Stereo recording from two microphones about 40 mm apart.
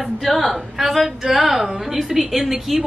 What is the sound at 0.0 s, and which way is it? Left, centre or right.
A woman's voice, centre.